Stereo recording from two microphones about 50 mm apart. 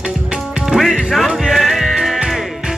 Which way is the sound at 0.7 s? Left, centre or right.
Centre.